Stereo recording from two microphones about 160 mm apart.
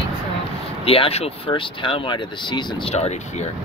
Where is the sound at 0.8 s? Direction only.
35° left (ahead or behind).